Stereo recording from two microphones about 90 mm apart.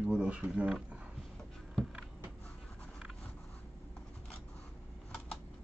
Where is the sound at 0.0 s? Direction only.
10° right (ahead or behind).